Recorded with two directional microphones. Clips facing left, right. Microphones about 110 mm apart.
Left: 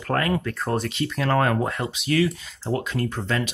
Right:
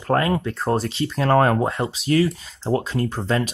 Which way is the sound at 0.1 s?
25° right (ahead or behind).